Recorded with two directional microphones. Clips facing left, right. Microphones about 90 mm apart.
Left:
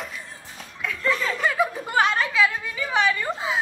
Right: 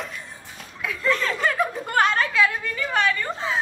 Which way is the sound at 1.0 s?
5° left (ahead or behind).